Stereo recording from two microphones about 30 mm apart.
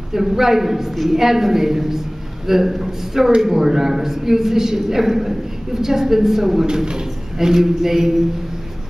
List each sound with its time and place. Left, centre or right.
0.1 s a woman's voice: centre
6.6 s speech: right
7.3 s a woman's voice: centre